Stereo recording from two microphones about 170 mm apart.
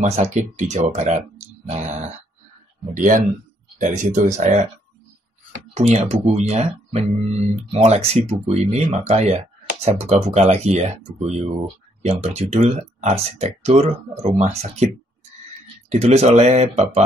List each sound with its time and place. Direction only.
0.0 s speech: 45° right (ahead or behind)
2.9 s speech: 50° right (ahead or behind)
5.8 s speech: 40° right (ahead or behind)
15.9 s speech: 40° right (ahead or behind)